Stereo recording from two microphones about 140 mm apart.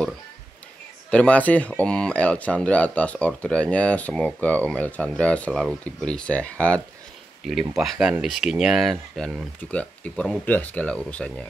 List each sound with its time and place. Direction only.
1.1 s speech: 10° left (ahead or behind)
7.7 s speech: centre (ahead or behind)